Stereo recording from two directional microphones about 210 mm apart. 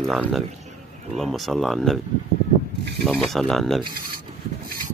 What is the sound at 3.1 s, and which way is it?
Speech, centre (ahead or behind).